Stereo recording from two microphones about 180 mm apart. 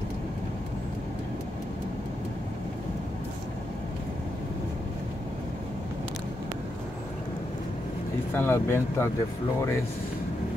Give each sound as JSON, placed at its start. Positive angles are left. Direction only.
{"t": 8.4, "sound": "speech", "side_deg": 10}